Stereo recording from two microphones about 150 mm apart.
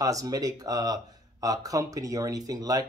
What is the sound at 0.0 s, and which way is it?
A man's voice, 25° right (ahead or behind).